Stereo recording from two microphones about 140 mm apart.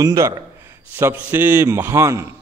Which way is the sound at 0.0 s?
25° right (ahead or behind).